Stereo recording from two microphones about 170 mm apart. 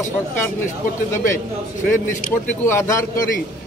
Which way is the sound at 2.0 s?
15° left (ahead or behind).